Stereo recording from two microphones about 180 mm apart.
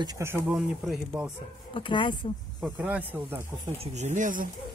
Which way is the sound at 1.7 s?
30° left (ahead or behind).